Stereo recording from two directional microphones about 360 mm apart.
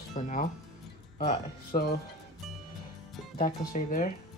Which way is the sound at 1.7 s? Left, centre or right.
Left.